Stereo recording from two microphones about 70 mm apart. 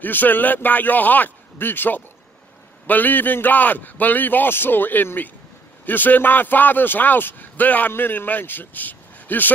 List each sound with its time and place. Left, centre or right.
0.0 s speech: left